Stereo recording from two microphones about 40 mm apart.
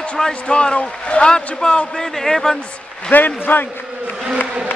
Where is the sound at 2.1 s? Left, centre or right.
Centre.